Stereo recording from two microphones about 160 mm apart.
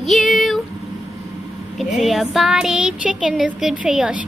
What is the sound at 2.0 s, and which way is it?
Speech, centre (ahead or behind).